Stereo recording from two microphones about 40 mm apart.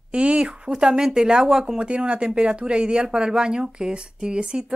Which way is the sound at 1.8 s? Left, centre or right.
Right.